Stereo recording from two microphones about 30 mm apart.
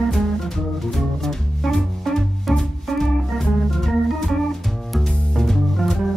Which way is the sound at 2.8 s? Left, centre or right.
Centre.